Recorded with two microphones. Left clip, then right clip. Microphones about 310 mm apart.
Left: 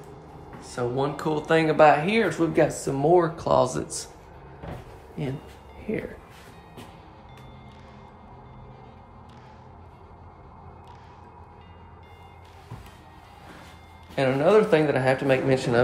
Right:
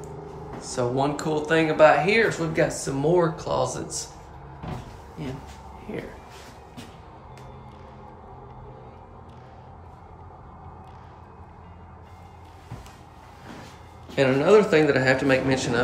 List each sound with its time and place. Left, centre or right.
0.6 s speech: centre
5.9 s speech: centre
14.1 s speech: centre